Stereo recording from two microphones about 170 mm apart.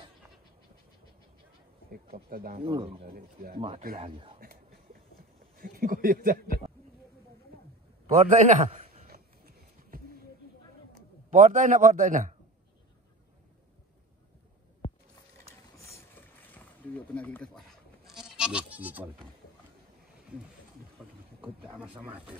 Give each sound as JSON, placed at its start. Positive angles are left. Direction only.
{"t": 1.9, "sound": "speech", "side_deg": -60}
{"t": 2.6, "sound": "speech", "side_deg": -30}
{"t": 3.1, "sound": "speech", "side_deg": -60}
{"t": 4.0, "sound": "speech", "side_deg": -30}
{"t": 4.4, "sound": "a sound", "side_deg": -60}
{"t": 5.6, "sound": "speech", "side_deg": -55}
{"t": 8.1, "sound": "a man's voice", "side_deg": -45}
{"t": 9.0, "sound": "a sound", "side_deg": -60}
{"t": 11.2, "sound": "a man's voice", "side_deg": -50}
{"t": 15.8, "sound": "boat", "side_deg": 15}
{"t": 21.6, "sound": "speech", "side_deg": -10}